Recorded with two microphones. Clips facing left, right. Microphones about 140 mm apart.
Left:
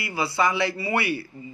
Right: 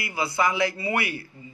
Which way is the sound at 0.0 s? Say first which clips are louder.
Left 1 dB; 15° right (ahead or behind).